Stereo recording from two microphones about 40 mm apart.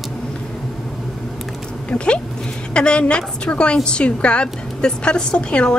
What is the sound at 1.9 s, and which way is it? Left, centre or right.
A woman's voice, left.